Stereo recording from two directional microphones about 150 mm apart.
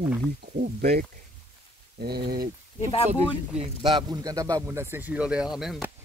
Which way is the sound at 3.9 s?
25° right (ahead or behind).